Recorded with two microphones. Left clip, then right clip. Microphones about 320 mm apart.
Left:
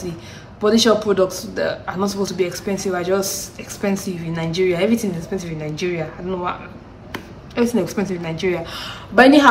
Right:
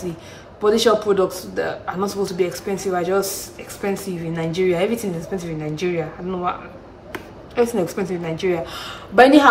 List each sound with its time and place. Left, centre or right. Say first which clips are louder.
0.6 s a man's voice: left 1 dB; centre